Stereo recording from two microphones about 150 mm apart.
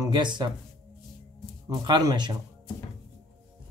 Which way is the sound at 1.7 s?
30° right (ahead or behind).